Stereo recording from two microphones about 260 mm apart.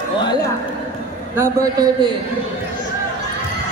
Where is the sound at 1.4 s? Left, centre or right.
Centre.